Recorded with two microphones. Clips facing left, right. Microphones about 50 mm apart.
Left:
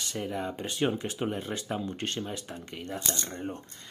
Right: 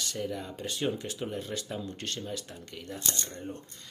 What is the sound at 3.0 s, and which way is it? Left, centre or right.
Speech, centre.